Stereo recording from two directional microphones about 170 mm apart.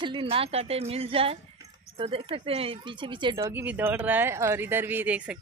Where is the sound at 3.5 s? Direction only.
10° right (ahead or behind).